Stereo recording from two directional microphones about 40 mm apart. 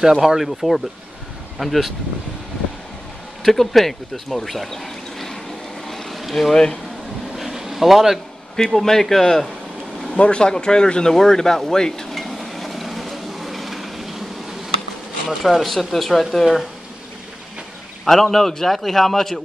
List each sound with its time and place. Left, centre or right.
0.0 s speech: centre
3.4 s speech: centre
5.9 s vehicle: centre
6.5 s speech: centre
7.3 s a sound: centre
8.7 s speech: centre
10.1 s speech: left
12.2 s a sound: centre
15.2 s speech: centre
18.0 s speech: centre